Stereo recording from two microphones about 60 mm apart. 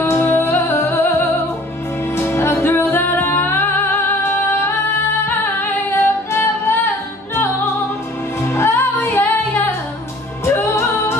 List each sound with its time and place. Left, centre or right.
0.2 s music: left
5.9 s music: left
8.4 s music: left